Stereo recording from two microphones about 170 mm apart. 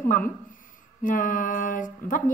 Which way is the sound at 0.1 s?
50° left (ahead or behind).